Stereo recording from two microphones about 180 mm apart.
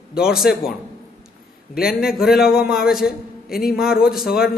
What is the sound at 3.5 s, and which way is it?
Speech, 55° left (ahead or behind).